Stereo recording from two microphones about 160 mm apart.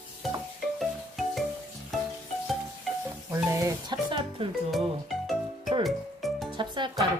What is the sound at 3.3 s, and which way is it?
Music, 20° right (ahead or behind).